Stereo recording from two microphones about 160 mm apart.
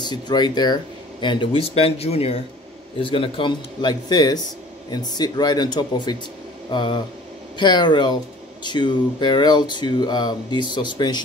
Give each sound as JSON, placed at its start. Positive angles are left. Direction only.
{"t": 0.0, "sound": "speech", "side_deg": 25}